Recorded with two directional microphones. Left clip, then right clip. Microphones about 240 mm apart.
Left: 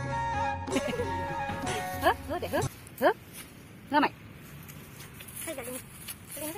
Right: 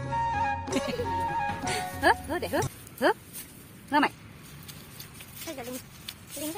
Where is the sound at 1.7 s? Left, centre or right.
Right.